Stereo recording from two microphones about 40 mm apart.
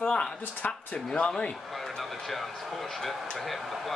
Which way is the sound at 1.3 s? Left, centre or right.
Left.